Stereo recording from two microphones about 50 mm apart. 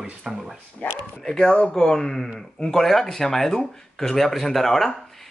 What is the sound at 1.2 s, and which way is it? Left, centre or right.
Speech, centre.